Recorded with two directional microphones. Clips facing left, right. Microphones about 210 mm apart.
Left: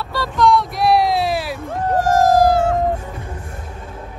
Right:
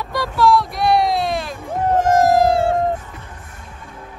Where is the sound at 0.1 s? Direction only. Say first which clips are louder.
Even; 15° right (ahead or behind).